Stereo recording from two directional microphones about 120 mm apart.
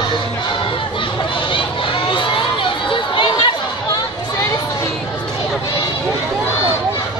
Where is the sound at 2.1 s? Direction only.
45° left (ahead or behind).